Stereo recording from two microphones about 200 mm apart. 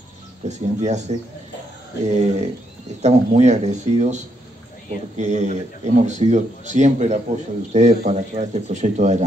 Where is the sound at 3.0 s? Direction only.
35° right (ahead or behind).